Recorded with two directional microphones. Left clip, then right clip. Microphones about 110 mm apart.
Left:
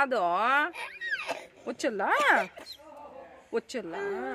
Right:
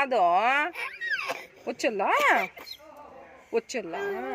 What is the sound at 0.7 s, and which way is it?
Cat, 45° left (ahead or behind).